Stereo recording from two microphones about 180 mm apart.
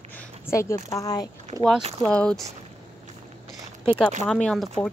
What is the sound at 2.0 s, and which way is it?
Speech, 5° left (ahead or behind).